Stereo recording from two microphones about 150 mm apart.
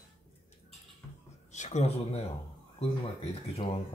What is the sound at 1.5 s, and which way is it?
Speech, 50° left (ahead or behind).